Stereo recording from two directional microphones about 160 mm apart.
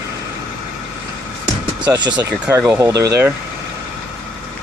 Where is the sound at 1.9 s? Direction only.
25° right (ahead or behind).